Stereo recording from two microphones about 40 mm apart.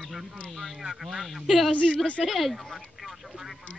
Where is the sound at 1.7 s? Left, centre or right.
Left.